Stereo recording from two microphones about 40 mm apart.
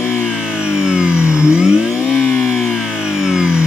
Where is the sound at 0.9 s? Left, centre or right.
Centre.